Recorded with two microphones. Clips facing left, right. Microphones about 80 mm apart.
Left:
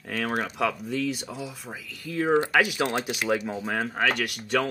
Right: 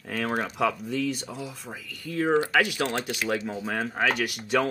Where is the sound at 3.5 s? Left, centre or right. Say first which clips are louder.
Left 1 dB; centre.